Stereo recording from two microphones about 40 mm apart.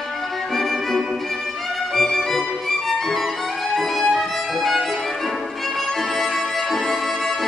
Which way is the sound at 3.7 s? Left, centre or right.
Centre.